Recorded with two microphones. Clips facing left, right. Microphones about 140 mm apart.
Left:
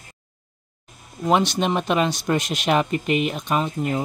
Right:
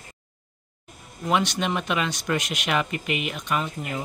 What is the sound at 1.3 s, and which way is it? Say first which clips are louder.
Speech: left 4 dB; 35° left (ahead or behind).